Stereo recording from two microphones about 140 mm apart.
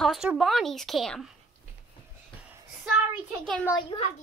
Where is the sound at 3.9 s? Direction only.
30° left (ahead or behind).